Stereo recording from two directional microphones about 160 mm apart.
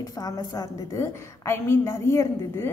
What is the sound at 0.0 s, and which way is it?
A woman's voice, 20° left (ahead or behind).